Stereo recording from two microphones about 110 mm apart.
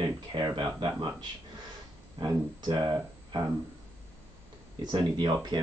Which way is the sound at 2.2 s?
40° right (ahead or behind).